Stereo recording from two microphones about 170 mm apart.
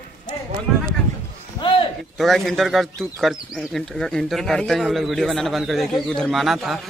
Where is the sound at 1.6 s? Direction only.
30° left (ahead or behind).